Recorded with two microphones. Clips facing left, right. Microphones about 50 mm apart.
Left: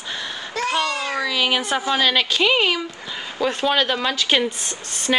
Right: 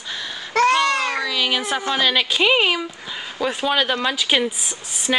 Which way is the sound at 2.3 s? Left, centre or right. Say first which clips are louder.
Right 1 dB; centre.